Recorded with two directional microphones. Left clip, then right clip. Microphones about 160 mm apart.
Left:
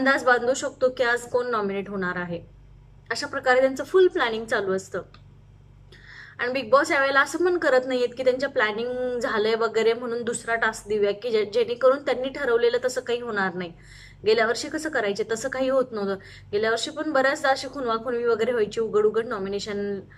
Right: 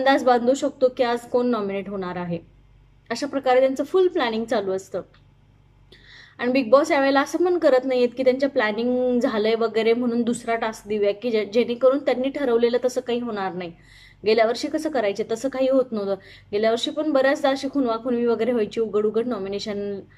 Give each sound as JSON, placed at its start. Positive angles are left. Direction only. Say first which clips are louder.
{"t": 0.0, "sound": "a woman's voice", "louder": "right 2 dB", "side_deg": -20}
{"t": 6.1, "sound": "a woman's voice", "louder": "right 4 dB", "side_deg": -20}